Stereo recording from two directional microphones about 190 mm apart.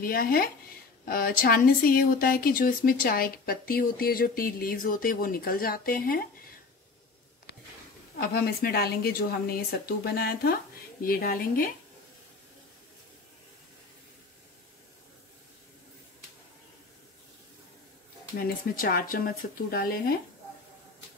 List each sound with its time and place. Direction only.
0.0 s speech: 50° left (ahead or behind)
8.2 s a woman's voice: 55° left (ahead or behind)
18.4 s speech: 50° left (ahead or behind)